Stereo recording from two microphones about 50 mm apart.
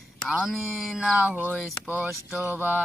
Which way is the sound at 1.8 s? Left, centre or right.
Right.